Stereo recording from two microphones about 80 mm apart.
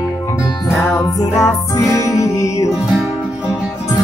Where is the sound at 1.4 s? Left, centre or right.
Left.